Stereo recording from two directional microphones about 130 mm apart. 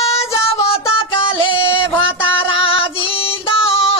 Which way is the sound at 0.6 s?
45° left (ahead or behind).